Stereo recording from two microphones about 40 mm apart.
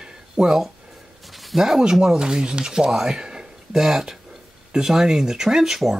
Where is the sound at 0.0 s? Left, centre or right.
Centre.